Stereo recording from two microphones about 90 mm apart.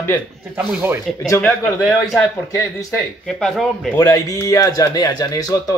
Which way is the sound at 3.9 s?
40° left (ahead or behind).